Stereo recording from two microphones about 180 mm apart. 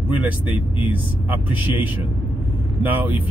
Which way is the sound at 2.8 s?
10° right (ahead or behind).